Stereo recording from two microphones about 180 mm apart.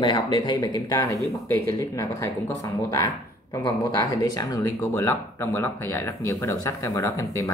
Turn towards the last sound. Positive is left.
turn(degrees=15)  # may be behind; listen again after turning